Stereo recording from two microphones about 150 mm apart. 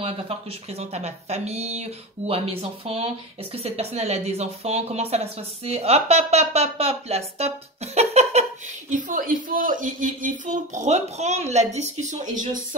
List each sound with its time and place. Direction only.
0.0 s speech: 40° right (ahead or behind)
8.9 s speech: 60° right (ahead or behind)